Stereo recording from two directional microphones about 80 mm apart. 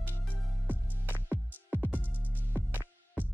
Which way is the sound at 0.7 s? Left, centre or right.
Right.